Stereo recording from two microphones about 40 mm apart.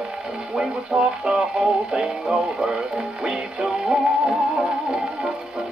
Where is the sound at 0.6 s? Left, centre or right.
Right.